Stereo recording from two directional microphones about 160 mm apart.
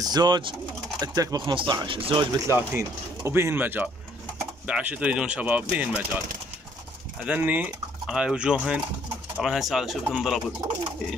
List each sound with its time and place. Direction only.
0.0 s speech: 25° right (ahead or behind)
2.4 s speech: 15° right (ahead or behind)
7.2 s speech: 10° right (ahead or behind)